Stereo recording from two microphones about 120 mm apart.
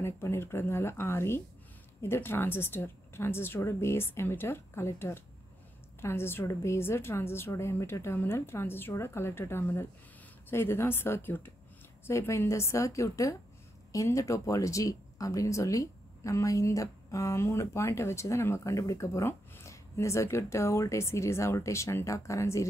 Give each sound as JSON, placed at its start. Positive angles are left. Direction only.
{"t": 0.0, "sound": "speech", "side_deg": 20}